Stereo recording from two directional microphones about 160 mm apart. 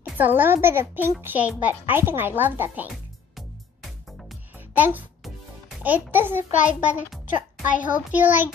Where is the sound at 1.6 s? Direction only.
10° right (ahead or behind).